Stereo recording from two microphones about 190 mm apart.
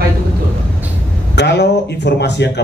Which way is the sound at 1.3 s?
65° left (ahead or behind).